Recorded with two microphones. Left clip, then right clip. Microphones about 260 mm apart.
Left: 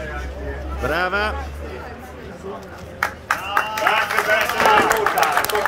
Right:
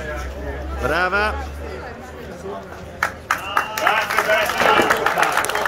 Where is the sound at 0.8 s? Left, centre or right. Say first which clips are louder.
Right 2 dB; centre.